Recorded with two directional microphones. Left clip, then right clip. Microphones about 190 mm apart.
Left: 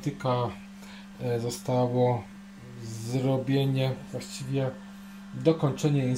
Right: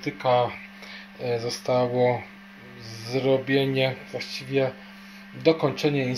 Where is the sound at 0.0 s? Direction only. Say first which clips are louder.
Right 7 dB; centre (ahead or behind).